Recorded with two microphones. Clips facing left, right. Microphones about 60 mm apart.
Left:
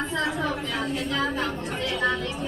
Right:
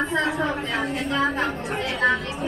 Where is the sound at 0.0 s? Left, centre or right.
Right.